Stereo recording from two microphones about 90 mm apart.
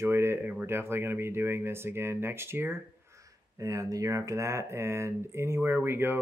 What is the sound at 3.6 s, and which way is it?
Speech, 35° right (ahead or behind).